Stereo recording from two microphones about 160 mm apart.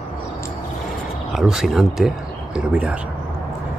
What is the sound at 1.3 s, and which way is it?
Speech, centre (ahead or behind).